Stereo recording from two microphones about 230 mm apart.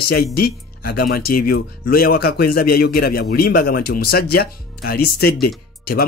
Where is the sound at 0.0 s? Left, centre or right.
Left.